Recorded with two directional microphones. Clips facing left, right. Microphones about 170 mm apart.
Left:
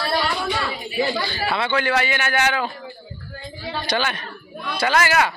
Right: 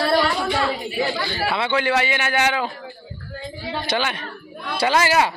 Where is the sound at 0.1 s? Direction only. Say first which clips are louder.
Right 3 dB; 45° right (ahead or behind).